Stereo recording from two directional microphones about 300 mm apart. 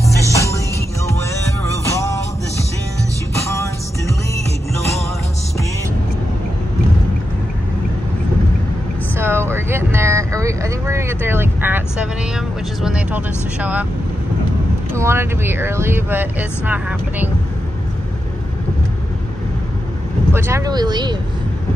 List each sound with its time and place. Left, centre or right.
0.1 s music: centre
9.1 s vehicle: centre
15.0 s vehicle: centre
20.3 s a sound: centre